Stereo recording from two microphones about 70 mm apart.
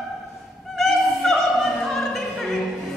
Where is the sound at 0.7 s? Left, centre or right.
Centre.